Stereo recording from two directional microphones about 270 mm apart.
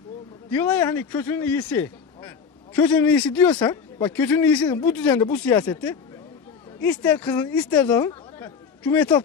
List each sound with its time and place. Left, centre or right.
0.5 s speech: centre